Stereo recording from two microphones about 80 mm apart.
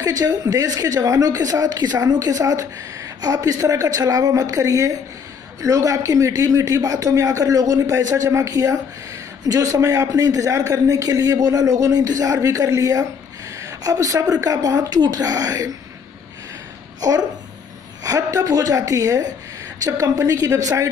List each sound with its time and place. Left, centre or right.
0.0 s a woman's voice: right
13.6 s a sound: right
14.3 s a woman's voice: right
17.0 s a woman's voice: right